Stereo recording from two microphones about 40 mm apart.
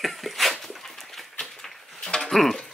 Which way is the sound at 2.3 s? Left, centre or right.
Centre.